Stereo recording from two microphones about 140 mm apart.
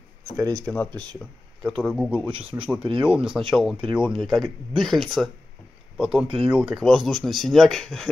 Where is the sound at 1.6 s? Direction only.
5° right (ahead or behind).